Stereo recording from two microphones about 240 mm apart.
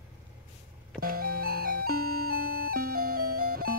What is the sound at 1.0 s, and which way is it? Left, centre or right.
Music, right.